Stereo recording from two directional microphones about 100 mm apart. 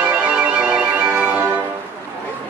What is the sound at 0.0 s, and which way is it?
Music, 10° right (ahead or behind).